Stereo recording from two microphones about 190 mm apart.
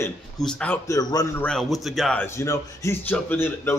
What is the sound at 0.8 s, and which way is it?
A man's voice, 15° left (ahead or behind).